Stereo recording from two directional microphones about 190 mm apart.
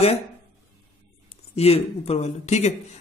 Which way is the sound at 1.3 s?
30° left (ahead or behind).